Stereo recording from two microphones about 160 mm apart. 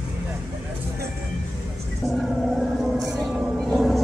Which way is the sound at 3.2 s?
Centre (ahead or behind).